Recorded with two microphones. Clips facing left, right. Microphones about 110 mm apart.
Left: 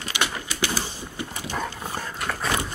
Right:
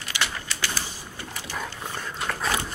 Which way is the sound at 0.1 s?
20° left (ahead or behind).